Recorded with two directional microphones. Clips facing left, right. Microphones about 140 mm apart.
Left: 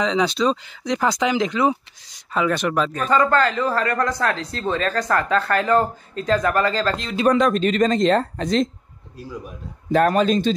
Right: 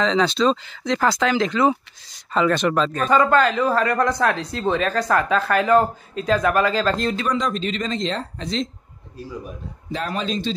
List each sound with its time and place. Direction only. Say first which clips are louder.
0.0 s speech: right 1 dB; 10° left (ahead or behind)
3.1 s speech: right 1 dB; 15° right (ahead or behind)
7.2 s speech: left 6 dB; 55° left (ahead or behind)
9.8 s speech: left 9 dB; 55° left (ahead or behind)